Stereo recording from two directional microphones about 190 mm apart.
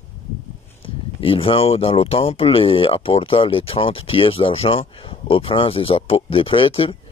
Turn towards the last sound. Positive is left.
turn(degrees=30)  # may be behind; listen again after turning